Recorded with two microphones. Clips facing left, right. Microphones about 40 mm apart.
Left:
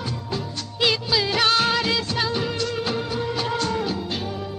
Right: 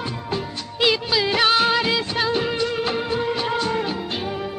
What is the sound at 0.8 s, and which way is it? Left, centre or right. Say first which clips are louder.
Music of bollywood: right 2 dB; centre.